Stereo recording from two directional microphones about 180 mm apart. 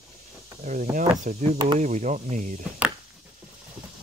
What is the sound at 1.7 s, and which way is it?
Chop, 40° right (ahead or behind).